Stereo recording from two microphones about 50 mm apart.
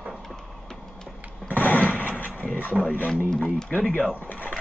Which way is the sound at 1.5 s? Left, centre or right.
Left.